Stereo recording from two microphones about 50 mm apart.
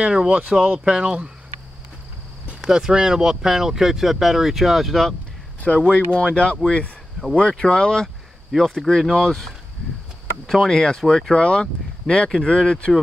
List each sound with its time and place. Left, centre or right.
0.0 s speech: right
2.6 s speech: centre
5.6 s speech: left
8.5 s speech: centre
11.4 s speech: centre